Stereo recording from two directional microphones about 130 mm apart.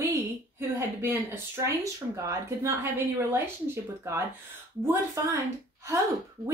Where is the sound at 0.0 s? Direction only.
20° right (ahead or behind).